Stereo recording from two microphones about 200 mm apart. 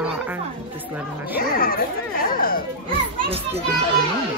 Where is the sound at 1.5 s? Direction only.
45° left (ahead or behind).